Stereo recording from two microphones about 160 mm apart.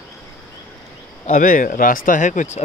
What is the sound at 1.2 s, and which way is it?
Speech, 55° left (ahead or behind).